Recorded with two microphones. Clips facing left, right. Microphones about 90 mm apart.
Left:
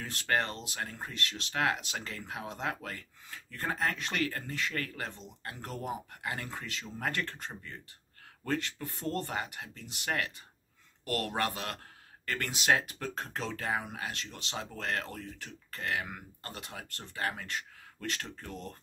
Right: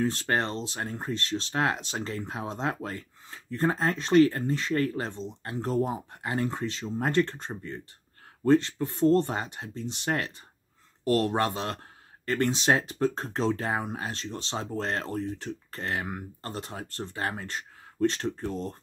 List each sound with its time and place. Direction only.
0.0 s speech: 30° right (ahead or behind)